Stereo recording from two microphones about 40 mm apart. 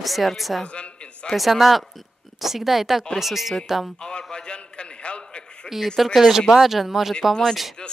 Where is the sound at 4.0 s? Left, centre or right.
Left.